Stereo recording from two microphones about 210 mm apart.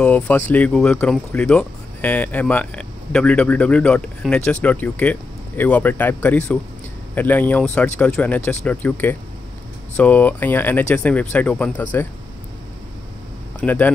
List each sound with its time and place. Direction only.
0.0 s speech: 5° left (ahead or behind)
13.6 s speech: 10° left (ahead or behind)